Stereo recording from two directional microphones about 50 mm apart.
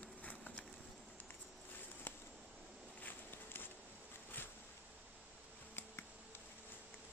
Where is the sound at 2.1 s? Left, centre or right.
Left.